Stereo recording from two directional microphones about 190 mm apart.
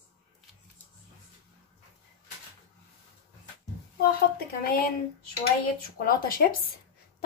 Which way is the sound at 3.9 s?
50° left (ahead or behind).